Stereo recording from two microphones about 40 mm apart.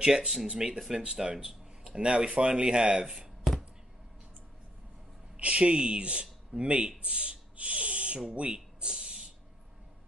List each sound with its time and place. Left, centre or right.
0.0 s speech: right
0.6 s speech: centre
1.4 s a sound: centre
2.0 s speech: right
5.4 s speech: right
8.5 s a sound: right